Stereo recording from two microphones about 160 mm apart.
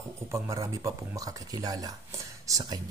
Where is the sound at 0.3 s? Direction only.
20° right (ahead or behind).